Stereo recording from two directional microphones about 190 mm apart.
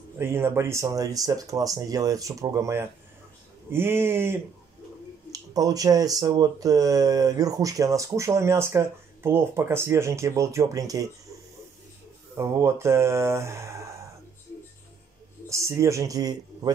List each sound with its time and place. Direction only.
0.2 s speech: 10° right (ahead or behind)
12.4 s speech: 15° right (ahead or behind)
15.5 s speech: 15° right (ahead or behind)